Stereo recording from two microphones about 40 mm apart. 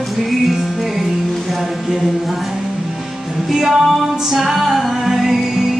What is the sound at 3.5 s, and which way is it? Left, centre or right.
Music, centre.